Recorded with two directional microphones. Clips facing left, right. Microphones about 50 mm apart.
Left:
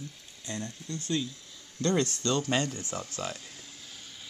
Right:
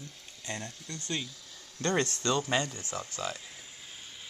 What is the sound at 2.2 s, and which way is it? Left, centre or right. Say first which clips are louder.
Speech: left 1 dB; right.